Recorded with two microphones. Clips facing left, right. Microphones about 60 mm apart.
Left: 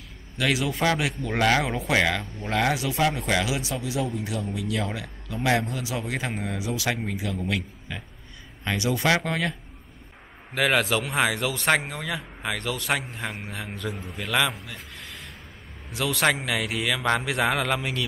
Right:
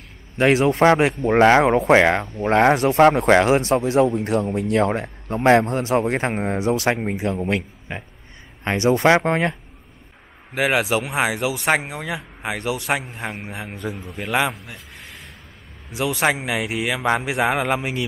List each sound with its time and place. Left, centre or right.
0.4 s speech: right
10.5 s a man's voice: centre
15.0 s a sound: centre
15.9 s speech: centre